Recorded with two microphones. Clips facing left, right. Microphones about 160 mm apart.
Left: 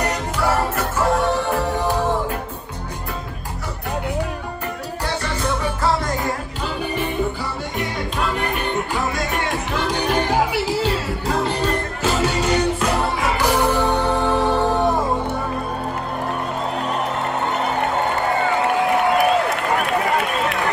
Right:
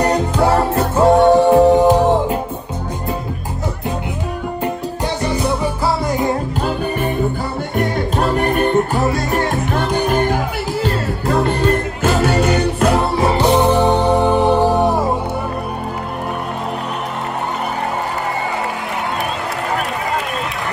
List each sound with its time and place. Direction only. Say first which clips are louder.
0.0 s music: right 7 dB; 30° right (ahead or behind)
1.9 s music: right 8 dB; 20° right (ahead or behind)
5.2 s music: right 7 dB; 15° right (ahead or behind)
7.7 s music: right 9 dB; 45° right (ahead or behind); by 12.9 s 65° right (ahead or behind)
13.2 s music: right 6 dB; 30° right (ahead or behind); by 15.0 s 10° right (ahead or behind)